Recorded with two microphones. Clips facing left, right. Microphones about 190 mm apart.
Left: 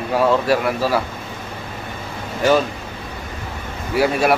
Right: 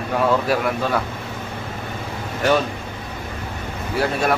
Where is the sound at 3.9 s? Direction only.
10° left (ahead or behind).